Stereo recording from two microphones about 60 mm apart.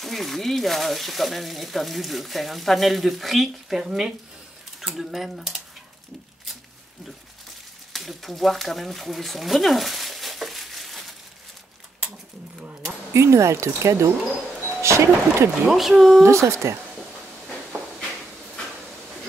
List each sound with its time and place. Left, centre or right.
0.0 s speech: centre
7.9 s a sound: centre
13.1 s speech: right
15.7 s speech: centre
16.2 s speech: right